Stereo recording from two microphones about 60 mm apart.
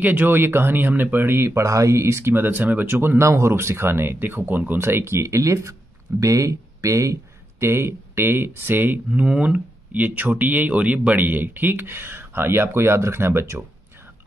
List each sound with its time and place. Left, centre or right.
0.0 s speech: right
1.6 s speech: right
2.3 s speech: right
4.7 s speech: right
7.6 s speech: right
9.1 s speech: centre; by 13.7 s right